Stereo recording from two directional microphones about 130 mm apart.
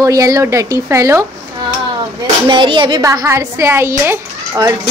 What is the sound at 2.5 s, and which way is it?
Speech, 40° right (ahead or behind).